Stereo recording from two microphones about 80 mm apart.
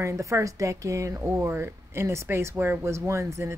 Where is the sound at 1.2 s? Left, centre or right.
Right.